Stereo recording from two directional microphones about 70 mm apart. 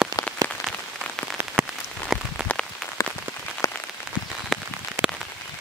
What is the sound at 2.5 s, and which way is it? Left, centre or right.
Rain on surface, centre.